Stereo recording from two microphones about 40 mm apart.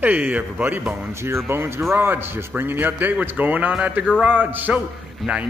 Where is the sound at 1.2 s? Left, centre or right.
Right.